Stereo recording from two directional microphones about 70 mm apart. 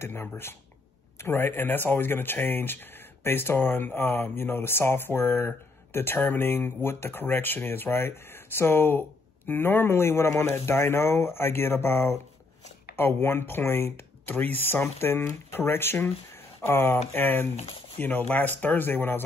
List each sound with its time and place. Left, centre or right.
0.0 s speech: left